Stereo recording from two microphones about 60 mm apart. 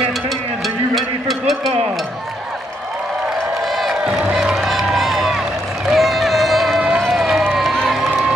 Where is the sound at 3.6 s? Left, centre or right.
Centre.